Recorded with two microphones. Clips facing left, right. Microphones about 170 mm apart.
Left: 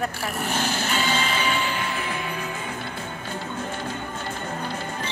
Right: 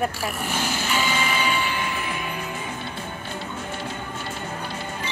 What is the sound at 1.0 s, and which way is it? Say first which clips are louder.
Music: right 2 dB; 10° right (ahead or behind).